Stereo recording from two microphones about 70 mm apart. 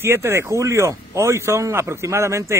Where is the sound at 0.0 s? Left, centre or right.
Right.